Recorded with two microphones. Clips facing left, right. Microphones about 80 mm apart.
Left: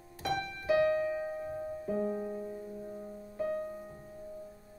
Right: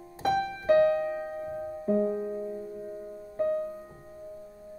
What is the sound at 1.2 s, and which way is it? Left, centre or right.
Music, right.